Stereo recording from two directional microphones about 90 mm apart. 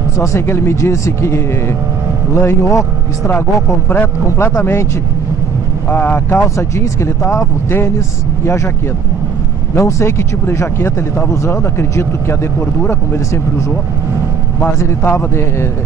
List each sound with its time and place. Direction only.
0.2 s speech: 30° left (ahead or behind)
3.9 s speech: 25° left (ahead or behind)
5.9 s speech: 25° left (ahead or behind)
9.8 s speech: 30° left (ahead or behind)
14.6 s speech: 25° left (ahead or behind)